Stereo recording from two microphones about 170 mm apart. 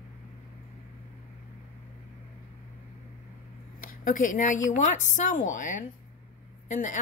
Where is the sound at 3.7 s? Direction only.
55° left (ahead or behind).